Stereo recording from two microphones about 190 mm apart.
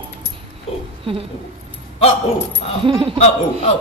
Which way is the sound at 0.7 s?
30° left (ahead or behind).